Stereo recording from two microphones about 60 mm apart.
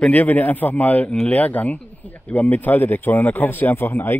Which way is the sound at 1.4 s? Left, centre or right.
Left.